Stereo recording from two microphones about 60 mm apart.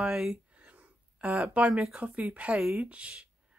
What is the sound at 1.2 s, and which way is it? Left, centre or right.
Speech, right.